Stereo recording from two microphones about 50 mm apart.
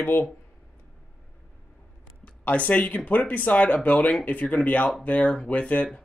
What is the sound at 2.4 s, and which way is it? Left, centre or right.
Speech, left.